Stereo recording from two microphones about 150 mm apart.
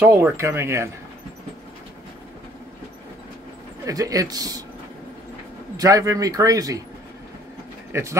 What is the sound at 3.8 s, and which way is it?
Speech, 25° right (ahead or behind).